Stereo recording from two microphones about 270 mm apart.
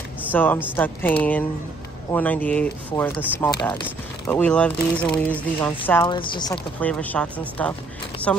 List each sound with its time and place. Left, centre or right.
0.3 s speech: centre
6.0 s speech: centre
6.5 s speech: centre